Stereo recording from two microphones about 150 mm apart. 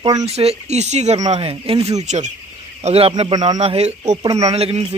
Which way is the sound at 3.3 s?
25° right (ahead or behind).